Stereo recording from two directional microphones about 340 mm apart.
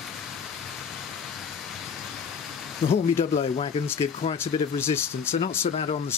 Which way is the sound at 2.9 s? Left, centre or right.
Centre.